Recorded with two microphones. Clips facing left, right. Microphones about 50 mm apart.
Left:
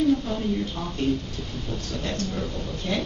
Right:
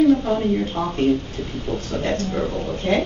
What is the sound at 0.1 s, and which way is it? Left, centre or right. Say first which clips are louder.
A woman's voice: right 6 dB; right.